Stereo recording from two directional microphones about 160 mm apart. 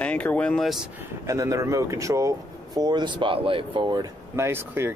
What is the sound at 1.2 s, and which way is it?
Speech, 20° right (ahead or behind).